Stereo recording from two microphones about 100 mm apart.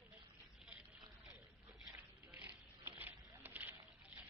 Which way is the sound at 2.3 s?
15° right (ahead or behind).